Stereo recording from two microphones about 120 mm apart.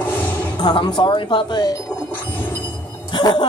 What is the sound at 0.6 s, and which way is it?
Speech, 40° left (ahead or behind).